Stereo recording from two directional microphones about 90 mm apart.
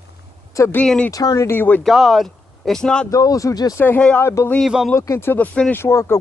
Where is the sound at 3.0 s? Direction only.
40° left (ahead or behind).